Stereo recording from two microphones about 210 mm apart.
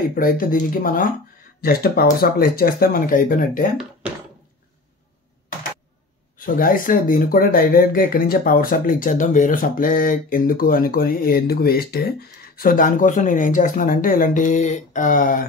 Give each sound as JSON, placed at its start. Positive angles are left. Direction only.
{"t": 0.1, "sound": "speech", "side_deg": 40}
{"t": 6.3, "sound": "speech", "side_deg": 40}